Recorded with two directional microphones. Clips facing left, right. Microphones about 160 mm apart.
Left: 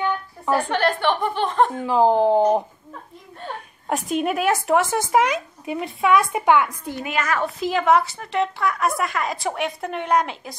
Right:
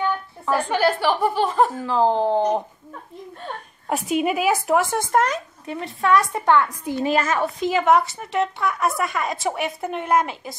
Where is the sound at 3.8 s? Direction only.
5° right (ahead or behind); by 6.7 s 10° left (ahead or behind).